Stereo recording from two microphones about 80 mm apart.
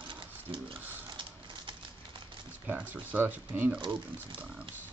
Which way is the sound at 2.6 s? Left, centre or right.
Right.